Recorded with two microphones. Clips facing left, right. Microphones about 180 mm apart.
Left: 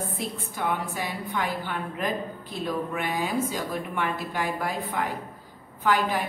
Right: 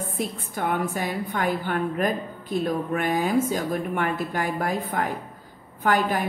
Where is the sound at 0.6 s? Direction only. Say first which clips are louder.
Right 4 dB; 50° right (ahead or behind).